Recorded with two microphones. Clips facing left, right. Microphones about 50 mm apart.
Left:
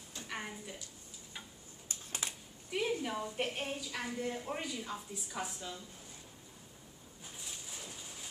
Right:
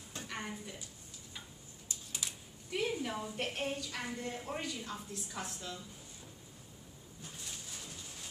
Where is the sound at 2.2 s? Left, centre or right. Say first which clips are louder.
Left 2 dB; left.